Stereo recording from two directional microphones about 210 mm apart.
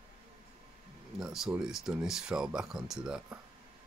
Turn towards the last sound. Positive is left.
turn(degrees=-5)  # may be behind; listen again after turning